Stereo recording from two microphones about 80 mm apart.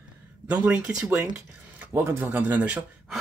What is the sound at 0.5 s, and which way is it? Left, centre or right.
Speech, centre.